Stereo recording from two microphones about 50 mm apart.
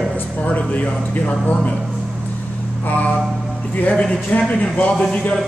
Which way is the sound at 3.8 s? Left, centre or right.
Left.